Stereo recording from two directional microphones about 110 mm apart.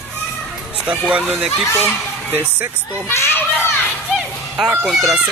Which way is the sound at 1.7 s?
20° left (ahead or behind).